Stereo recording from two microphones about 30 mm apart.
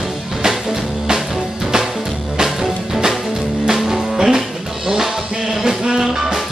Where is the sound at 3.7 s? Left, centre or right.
Centre.